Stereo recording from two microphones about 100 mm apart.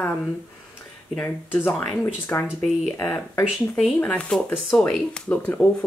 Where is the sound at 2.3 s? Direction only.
25° left (ahead or behind).